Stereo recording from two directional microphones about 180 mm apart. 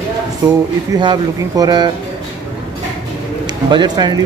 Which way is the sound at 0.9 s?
20° right (ahead or behind).